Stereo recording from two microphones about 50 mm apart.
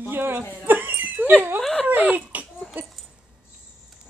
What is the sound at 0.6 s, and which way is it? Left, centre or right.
Dog, right.